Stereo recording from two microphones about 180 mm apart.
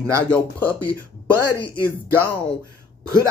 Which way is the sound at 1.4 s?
15° right (ahead or behind).